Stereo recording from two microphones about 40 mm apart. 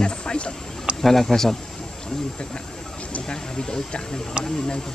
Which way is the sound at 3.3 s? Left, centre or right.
Centre.